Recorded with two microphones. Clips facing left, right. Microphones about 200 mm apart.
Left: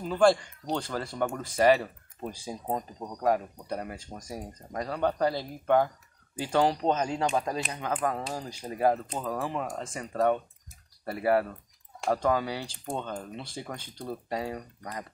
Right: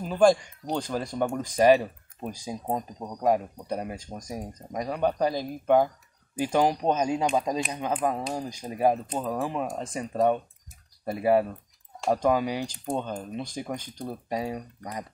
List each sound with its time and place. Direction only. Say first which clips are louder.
0.0 s speech: right 2 dB; 15° right (ahead or behind)